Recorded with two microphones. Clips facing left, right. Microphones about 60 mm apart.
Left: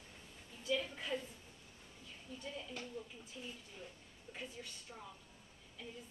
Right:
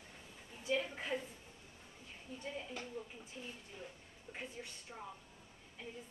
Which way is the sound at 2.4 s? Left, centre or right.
Right.